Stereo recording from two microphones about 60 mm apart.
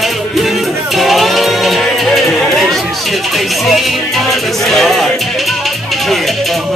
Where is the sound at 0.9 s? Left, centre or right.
Centre.